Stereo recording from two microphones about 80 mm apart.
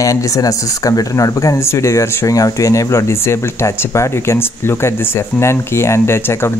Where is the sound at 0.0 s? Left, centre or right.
Left.